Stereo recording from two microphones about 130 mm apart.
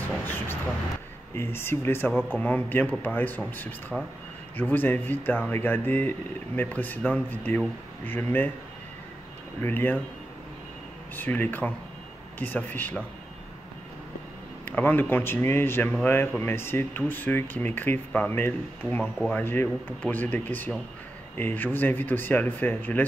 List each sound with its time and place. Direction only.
0.0 s vehicle: 15° left (ahead or behind)
1.3 s speech: 20° left (ahead or behind)
3.9 s speech: centre (ahead or behind)
4.6 s speech: 15° left (ahead or behind)
9.6 s speech: 15° left (ahead or behind)
11.1 s speech: 15° left (ahead or behind)
14.6 s speech: 15° left (ahead or behind)